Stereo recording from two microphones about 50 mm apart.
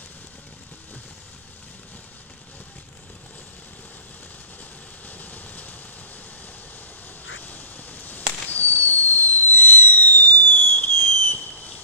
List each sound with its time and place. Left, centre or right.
5.0 s vehicle: left
7.3 s fireworks: left